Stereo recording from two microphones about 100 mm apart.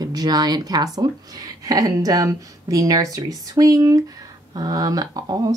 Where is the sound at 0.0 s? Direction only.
40° right (ahead or behind).